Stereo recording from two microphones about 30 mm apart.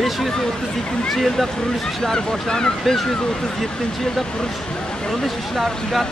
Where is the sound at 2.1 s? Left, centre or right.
Left.